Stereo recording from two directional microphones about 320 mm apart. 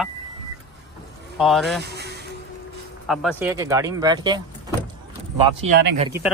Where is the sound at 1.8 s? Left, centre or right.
Right.